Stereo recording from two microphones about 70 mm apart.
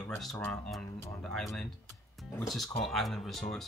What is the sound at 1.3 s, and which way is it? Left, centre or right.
Speech, centre.